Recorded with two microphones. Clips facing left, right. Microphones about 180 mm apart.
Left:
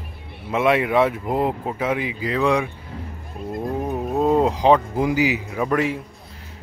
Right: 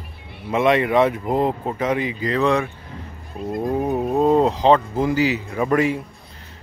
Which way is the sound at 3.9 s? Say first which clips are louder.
Right 1 dB; centre (ahead or behind).